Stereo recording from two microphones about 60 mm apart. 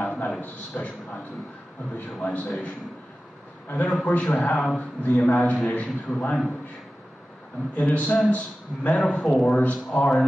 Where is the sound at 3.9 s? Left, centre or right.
Centre.